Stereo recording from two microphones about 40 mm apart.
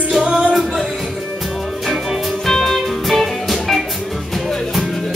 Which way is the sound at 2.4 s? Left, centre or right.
Centre.